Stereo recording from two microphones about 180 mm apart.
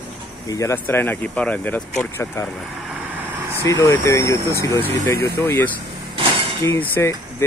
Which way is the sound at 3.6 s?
15° left (ahead or behind).